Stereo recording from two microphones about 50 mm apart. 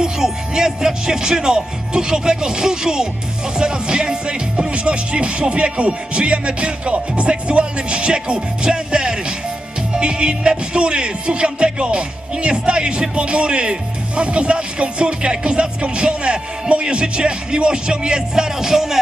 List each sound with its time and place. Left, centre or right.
0.0 s speech: centre